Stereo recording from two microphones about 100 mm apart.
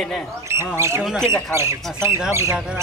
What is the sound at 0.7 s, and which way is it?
Speech, 30° right (ahead or behind).